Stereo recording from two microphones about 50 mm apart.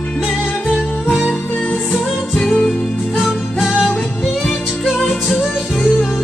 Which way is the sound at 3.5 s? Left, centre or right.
Centre.